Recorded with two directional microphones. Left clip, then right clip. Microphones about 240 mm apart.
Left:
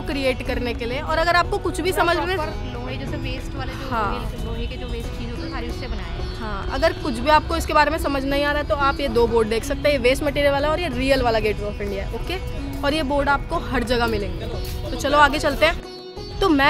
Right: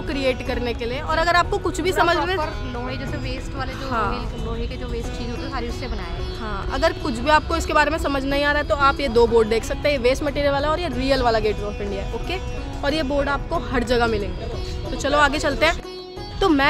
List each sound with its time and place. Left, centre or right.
0.1 s speech: centre
6.7 s speech: centre